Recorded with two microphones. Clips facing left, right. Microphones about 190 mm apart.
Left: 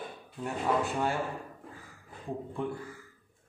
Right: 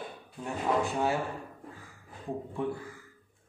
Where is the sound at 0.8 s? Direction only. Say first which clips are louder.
Right 2 dB; 5° right (ahead or behind).